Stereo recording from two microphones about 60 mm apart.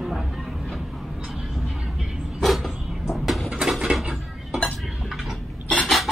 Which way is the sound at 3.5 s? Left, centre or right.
Centre.